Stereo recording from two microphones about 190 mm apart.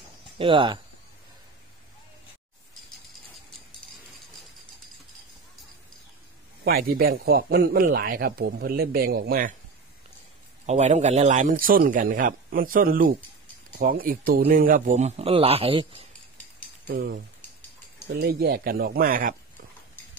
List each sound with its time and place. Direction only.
0.4 s speech: 25° right (ahead or behind)
6.6 s a man's voice: 50° right (ahead or behind)
10.7 s a man's voice: 35° right (ahead or behind)
16.8 s a man's voice: 55° right (ahead or behind)